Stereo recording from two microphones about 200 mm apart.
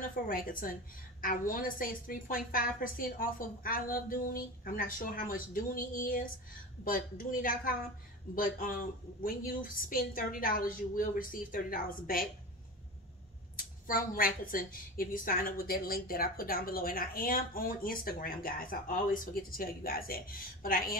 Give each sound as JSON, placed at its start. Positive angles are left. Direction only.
{"t": 0.1, "sound": "a woman's voice", "side_deg": 45}
{"t": 13.6, "sound": "a woman's voice", "side_deg": 45}